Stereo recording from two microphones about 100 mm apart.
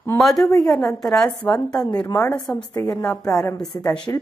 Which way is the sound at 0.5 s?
35° left (ahead or behind).